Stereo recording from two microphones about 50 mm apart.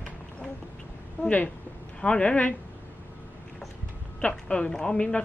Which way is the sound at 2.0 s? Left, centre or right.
Centre.